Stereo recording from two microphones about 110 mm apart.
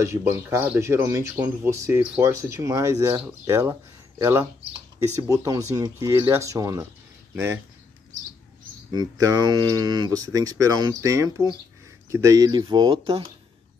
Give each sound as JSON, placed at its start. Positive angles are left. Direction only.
{"t": 0.0, "sound": "speech", "side_deg": -25}
{"t": 8.9, "sound": "speech", "side_deg": -35}
{"t": 12.9, "sound": "speech", "side_deg": -50}